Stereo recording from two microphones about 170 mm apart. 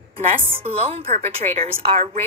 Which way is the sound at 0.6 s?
35° right (ahead or behind).